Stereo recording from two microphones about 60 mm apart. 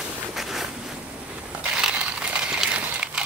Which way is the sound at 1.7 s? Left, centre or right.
Centre.